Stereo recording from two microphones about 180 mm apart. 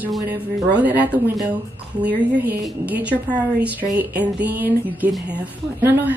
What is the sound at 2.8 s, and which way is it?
Speech, 10° right (ahead or behind).